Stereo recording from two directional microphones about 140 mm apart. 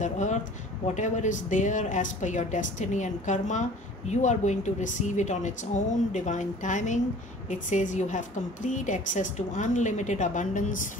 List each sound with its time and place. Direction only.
0.0 s a woman's voice: 60° left (ahead or behind)